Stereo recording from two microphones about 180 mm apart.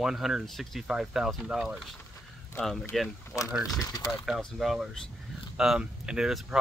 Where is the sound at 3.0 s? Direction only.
15° left (ahead or behind).